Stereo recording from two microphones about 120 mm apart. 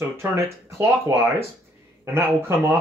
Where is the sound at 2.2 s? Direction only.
20° right (ahead or behind).